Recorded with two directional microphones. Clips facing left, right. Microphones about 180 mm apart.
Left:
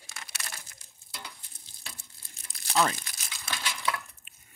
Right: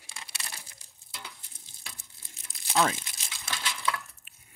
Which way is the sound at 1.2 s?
15° right (ahead or behind).